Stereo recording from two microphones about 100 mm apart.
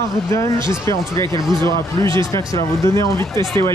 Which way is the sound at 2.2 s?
30° left (ahead or behind).